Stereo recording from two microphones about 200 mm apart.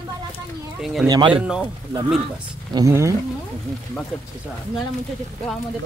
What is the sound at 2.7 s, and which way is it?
Speech, 15° right (ahead or behind).